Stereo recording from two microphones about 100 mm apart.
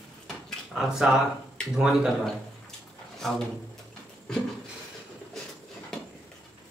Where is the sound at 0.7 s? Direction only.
5° right (ahead or behind).